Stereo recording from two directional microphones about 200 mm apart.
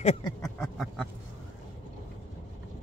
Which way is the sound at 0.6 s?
Centre (ahead or behind).